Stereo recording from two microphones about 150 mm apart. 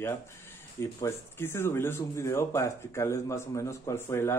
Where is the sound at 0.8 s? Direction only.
20° left (ahead or behind).